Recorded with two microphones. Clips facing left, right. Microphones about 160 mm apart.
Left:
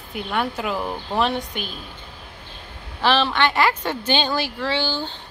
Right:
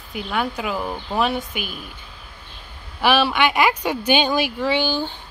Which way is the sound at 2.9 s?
10° right (ahead or behind).